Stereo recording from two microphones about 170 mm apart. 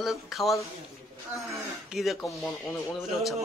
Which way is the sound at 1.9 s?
Centre (ahead or behind).